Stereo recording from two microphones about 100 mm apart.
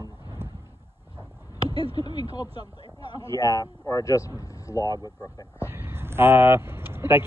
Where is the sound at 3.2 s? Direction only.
35° left (ahead or behind).